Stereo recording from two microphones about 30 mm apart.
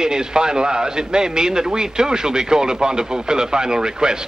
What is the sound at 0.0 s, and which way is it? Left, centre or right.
A man's voice, right.